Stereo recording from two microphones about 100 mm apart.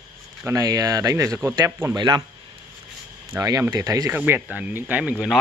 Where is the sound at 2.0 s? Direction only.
45° right (ahead or behind).